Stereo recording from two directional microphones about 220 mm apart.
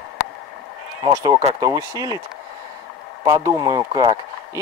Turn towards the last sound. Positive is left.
turn(degrees=-20)  # may be behind; listen again after turning